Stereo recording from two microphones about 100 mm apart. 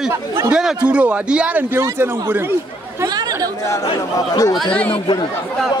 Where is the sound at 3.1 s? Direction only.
40° right (ahead or behind).